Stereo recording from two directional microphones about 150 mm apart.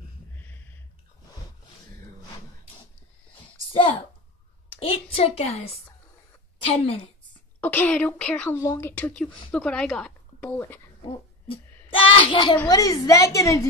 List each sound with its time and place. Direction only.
4.7 s a woman's voice: 40° left (ahead or behind)
7.6 s a woman's voice: 10° left (ahead or behind)
11.1 s speech: 35° left (ahead or behind)
11.9 s a sound: 35° left (ahead or behind)
12.6 s a woman's voice: 25° left (ahead or behind)